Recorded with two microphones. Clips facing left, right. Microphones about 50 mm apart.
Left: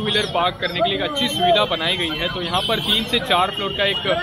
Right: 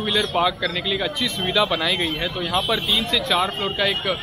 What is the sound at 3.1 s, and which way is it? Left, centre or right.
Speech, left.